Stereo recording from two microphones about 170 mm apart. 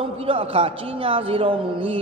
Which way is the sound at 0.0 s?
30° right (ahead or behind).